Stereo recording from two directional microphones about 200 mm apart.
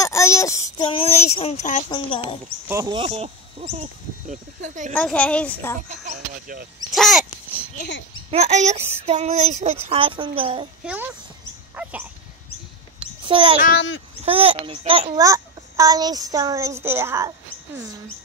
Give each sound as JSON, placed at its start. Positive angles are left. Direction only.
{"t": 0.0, "sound": "child singing", "side_deg": 15}
{"t": 0.9, "sound": "speech", "side_deg": 30}
{"t": 1.9, "sound": "speech", "side_deg": 25}
{"t": 2.7, "sound": "speech", "side_deg": -20}
{"t": 4.9, "sound": "a woman's voice", "side_deg": 5}
{"t": 5.8, "sound": "speech", "side_deg": -40}
{"t": 6.9, "sound": "speech", "side_deg": 0}
{"t": 8.3, "sound": "a child's voice", "side_deg": -35}
{"t": 10.8, "sound": "a child's voice", "side_deg": -5}
{"t": 13.2, "sound": "a child's voice", "side_deg": -25}
{"t": 13.6, "sound": "a child's voice", "side_deg": 55}
{"t": 14.2, "sound": "a child's voice", "side_deg": -30}
{"t": 15.2, "sound": "speech", "side_deg": -15}